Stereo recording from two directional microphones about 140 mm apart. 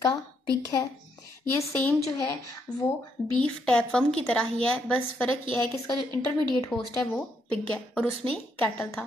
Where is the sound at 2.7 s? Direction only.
5° left (ahead or behind).